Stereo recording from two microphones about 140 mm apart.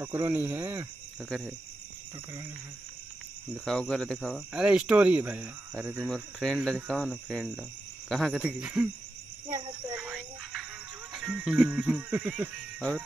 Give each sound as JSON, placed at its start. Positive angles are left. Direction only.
{"t": 0.0, "sound": "music", "side_deg": -15}
{"t": 3.6, "sound": "speech", "side_deg": 5}
{"t": 4.6, "sound": "music", "side_deg": -10}
{"t": 6.0, "sound": "speech", "side_deg": 0}
{"t": 9.6, "sound": "speech", "side_deg": -35}
{"t": 9.9, "sound": "a sound", "side_deg": -5}
{"t": 11.1, "sound": "music", "side_deg": -5}